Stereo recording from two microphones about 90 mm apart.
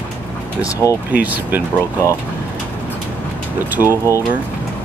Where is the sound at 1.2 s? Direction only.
20° right (ahead or behind).